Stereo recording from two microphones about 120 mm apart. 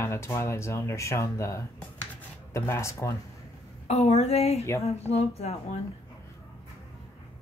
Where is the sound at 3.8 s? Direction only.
65° left (ahead or behind).